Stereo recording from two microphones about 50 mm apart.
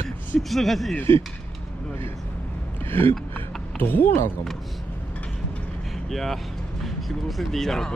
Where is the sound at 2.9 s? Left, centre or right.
Left.